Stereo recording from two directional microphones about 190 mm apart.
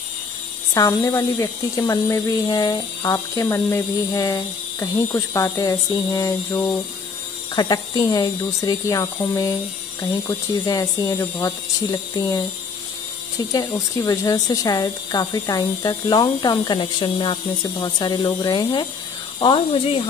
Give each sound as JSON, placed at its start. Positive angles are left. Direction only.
{"t": 0.7, "sound": "speech", "side_deg": 15}
{"t": 13.5, "sound": "speech", "side_deg": 20}